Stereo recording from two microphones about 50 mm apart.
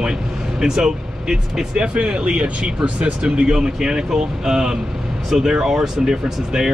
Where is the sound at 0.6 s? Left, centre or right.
Centre.